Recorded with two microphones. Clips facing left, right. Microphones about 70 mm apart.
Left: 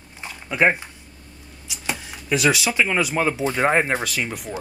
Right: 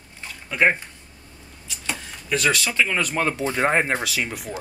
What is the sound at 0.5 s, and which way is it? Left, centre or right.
Speech, centre.